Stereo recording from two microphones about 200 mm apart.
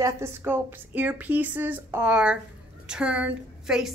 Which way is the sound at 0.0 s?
15° right (ahead or behind).